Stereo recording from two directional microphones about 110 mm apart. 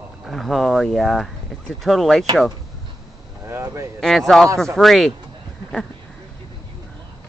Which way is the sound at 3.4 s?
25° right (ahead or behind).